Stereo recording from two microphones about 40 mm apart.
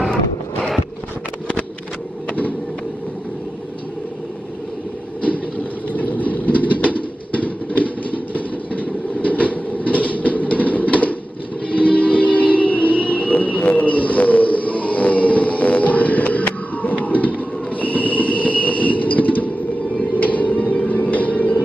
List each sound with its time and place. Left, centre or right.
5.9 s pigeon: left
11.7 s music: left
17.0 s train: left
20.2 s music: left